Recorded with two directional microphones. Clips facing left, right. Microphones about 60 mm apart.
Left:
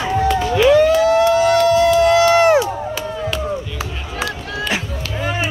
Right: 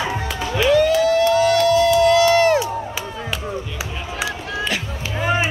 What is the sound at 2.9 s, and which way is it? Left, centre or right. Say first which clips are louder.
Chop: left 5 dB; centre.